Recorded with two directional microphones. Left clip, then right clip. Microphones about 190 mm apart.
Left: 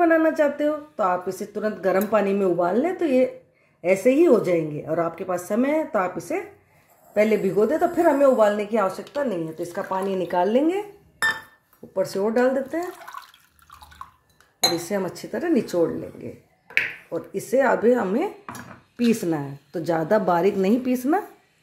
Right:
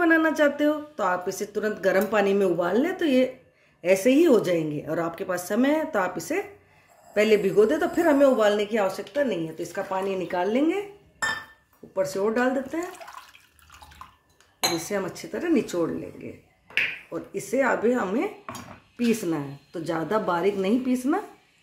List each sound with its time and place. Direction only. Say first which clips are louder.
0.0 s speech: left 2 dB; 20° left (ahead or behind); by 10.8 s 40° left (ahead or behind)
12.0 s a woman's voice: left 3 dB; 40° left (ahead or behind)
14.9 s a woman's voice: left 2 dB; 40° left (ahead or behind)